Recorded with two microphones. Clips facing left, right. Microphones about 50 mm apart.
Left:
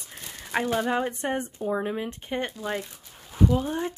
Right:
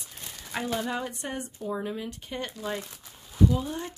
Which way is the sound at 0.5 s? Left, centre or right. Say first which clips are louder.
Left 5 dB; left.